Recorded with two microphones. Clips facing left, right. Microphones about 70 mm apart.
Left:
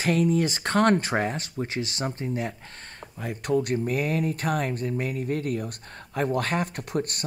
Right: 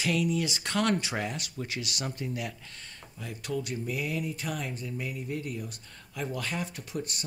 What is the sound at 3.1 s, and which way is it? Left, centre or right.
Speech, left.